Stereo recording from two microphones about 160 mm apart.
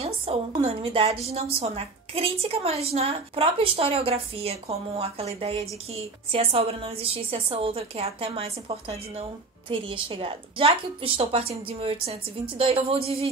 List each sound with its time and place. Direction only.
0.6 s a woman's voice: 40° right (ahead or behind)